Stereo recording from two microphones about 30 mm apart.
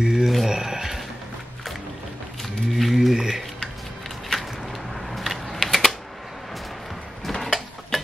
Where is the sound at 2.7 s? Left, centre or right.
Centre.